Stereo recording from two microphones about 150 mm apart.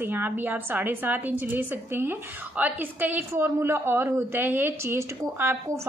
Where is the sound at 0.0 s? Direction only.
10° right (ahead or behind).